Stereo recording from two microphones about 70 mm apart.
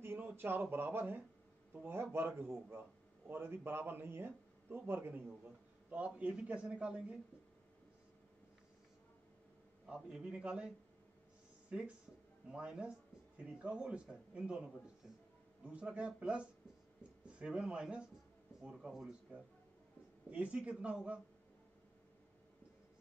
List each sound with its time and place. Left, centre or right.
0.0 s a man's voice: right; by 7.2 s centre
9.8 s speech: centre
12.4 s speech: centre